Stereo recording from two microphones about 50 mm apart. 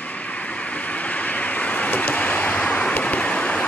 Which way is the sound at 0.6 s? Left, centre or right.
Left.